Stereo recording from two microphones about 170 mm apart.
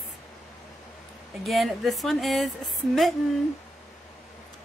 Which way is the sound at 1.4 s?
Centre (ahead or behind).